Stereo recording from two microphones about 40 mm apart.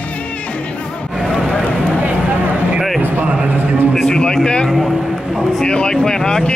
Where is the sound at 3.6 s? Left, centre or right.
Right.